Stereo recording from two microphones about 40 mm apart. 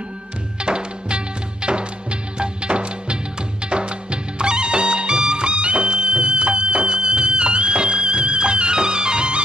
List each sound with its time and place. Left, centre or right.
0.6 s music: right